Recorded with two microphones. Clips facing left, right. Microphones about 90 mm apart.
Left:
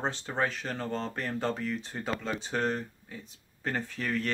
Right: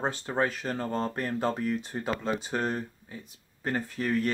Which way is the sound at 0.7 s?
40° right (ahead or behind).